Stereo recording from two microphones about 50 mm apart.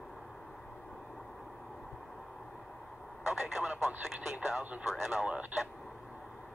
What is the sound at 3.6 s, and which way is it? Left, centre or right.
Speech, right.